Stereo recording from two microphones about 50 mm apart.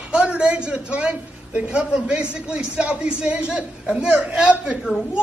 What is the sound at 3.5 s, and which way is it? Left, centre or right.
A man's voice, centre.